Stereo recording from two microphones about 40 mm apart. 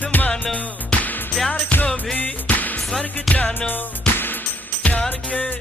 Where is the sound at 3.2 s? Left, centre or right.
Left.